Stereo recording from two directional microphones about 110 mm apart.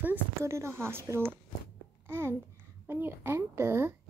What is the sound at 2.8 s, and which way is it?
A woman's voice, 20° right (ahead or behind).